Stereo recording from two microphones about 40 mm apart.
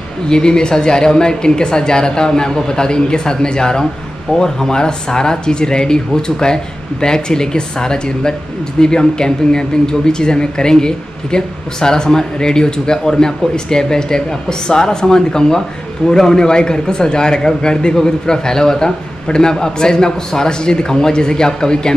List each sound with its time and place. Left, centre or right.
0.3 s speech: centre